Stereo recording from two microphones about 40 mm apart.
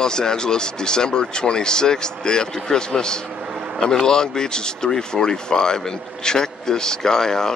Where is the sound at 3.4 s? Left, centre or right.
Centre.